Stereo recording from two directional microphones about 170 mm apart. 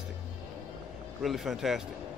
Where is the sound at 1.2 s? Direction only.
Centre (ahead or behind).